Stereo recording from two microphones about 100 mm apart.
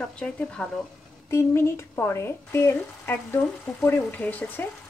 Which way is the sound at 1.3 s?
25° left (ahead or behind).